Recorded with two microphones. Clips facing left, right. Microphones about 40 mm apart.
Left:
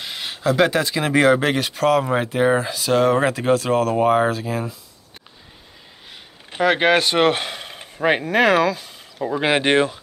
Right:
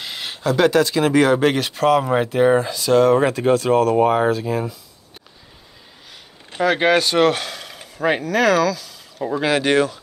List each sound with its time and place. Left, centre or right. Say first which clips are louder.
0.0 s a sound: even; centre
0.4 s speech: right 2 dB; centre
6.5 s speech: even; centre